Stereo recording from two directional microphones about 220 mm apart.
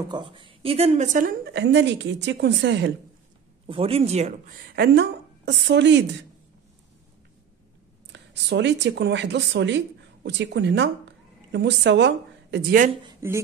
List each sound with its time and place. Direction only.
0.1 s speech: 20° right (ahead or behind)
1.5 s a woman's voice: 50° right (ahead or behind)
3.6 s speech: 25° right (ahead or behind)
4.7 s a woman's voice: 50° right (ahead or behind)
8.1 s a woman's voice: 50° right (ahead or behind)
13.0 s speech: 10° right (ahead or behind)